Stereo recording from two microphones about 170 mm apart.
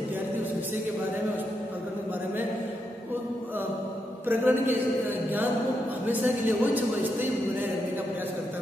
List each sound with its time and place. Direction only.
4.3 s speech: 10° right (ahead or behind)
6.0 s speech: 10° right (ahead or behind)